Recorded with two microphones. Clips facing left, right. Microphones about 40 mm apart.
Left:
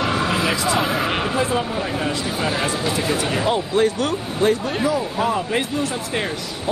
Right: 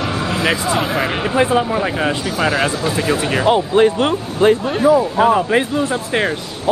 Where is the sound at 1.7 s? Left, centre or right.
Right.